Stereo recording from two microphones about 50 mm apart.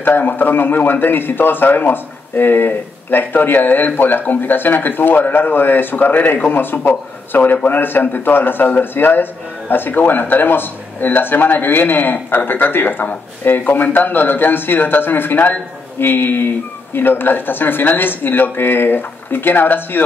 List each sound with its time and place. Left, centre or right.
0.0 s a man's voice: left